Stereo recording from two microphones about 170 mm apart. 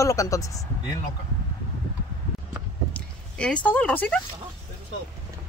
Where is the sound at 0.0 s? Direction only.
20° left (ahead or behind).